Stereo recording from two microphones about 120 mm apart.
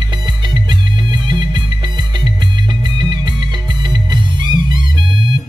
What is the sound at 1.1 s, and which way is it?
Music, 40° right (ahead or behind).